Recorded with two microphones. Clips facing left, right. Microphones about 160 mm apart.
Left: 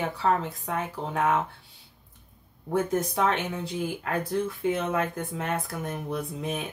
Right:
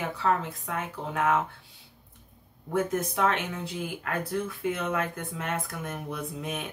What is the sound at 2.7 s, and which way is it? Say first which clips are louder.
Speech: left 2 dB; 30° left (ahead or behind).